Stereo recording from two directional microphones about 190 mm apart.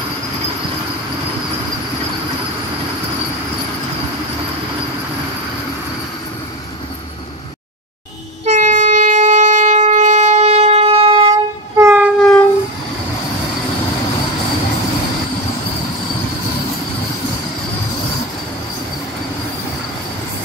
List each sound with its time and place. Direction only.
8.5 s wind instrument: 40° right (ahead or behind)
11.7 s train: 10° right (ahead or behind)
12.2 s train: 5° left (ahead or behind)